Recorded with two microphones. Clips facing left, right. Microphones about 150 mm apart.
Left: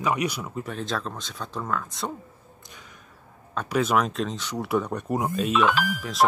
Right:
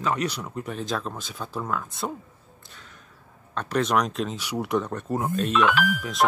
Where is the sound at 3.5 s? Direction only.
5° left (ahead or behind); by 4.7 s 10° right (ahead or behind).